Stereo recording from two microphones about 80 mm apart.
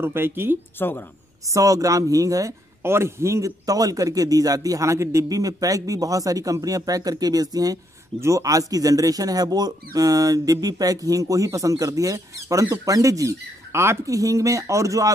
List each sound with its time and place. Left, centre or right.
0.0 s speech: right
0.7 s speech: left
1.5 s speech: right
2.8 s speech: right